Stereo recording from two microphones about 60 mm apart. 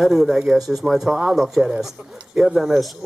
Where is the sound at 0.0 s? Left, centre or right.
Centre.